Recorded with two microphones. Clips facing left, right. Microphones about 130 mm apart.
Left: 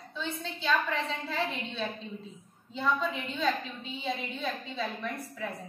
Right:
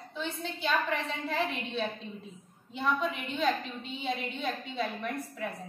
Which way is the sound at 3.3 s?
15° right (ahead or behind).